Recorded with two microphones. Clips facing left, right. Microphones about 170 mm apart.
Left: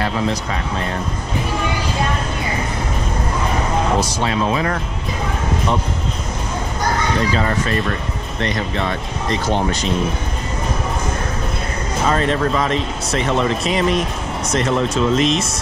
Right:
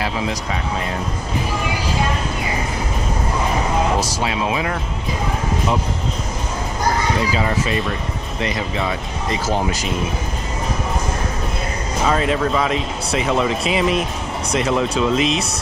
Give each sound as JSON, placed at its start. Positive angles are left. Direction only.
{"t": 4.3, "sound": "speech", "side_deg": 35}
{"t": 7.2, "sound": "speech", "side_deg": -5}
{"t": 12.1, "sound": "speech", "side_deg": -5}